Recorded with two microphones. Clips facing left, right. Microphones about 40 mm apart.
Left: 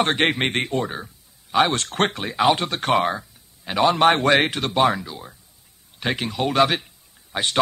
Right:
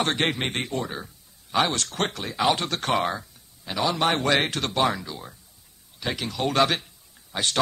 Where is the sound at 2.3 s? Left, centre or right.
Centre.